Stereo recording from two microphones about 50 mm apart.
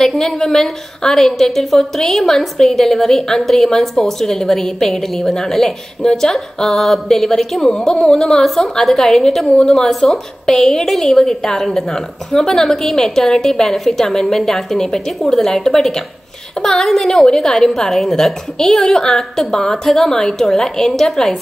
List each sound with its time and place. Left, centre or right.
0.0 s a woman's voice: centre